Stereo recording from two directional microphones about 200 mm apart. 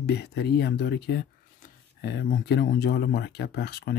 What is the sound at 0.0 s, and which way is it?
Speech, 55° left (ahead or behind).